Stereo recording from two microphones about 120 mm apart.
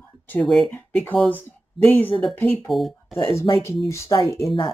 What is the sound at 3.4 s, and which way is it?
Speech, 25° left (ahead or behind).